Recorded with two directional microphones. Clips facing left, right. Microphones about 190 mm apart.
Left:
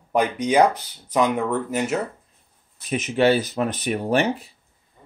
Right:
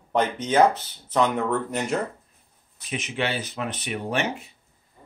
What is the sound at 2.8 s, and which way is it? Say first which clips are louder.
Speech: left 9 dB; 40° left (ahead or behind).